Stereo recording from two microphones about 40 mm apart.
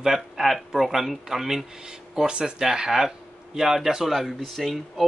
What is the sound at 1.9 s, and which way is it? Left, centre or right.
A man's voice, right.